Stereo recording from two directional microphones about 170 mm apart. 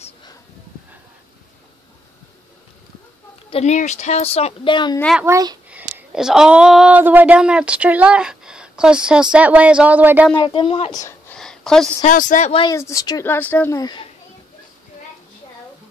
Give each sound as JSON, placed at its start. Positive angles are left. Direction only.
{"t": 3.4, "sound": "speech", "side_deg": 40}
{"t": 5.2, "sound": "a child's voice", "side_deg": -20}
{"t": 5.7, "sound": "speech", "side_deg": -10}
{"t": 10.3, "sound": "speech", "side_deg": 30}
{"t": 10.9, "sound": "a sound", "side_deg": 15}
{"t": 11.3, "sound": "a sound", "side_deg": 5}
{"t": 12.0, "sound": "speech", "side_deg": 50}
{"t": 12.7, "sound": "speech", "side_deg": 20}
{"t": 13.7, "sound": "speech", "side_deg": 25}